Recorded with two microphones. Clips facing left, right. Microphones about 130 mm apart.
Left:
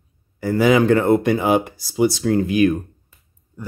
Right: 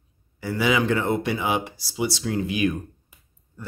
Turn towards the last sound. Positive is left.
turn(degrees=15)  # may be behind; listen again after turning